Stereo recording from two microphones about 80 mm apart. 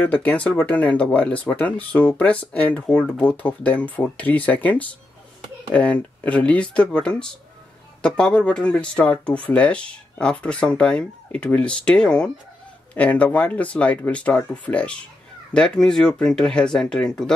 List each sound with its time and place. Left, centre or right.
0.0 s speech: centre